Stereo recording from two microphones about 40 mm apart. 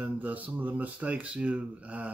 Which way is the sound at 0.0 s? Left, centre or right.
Right.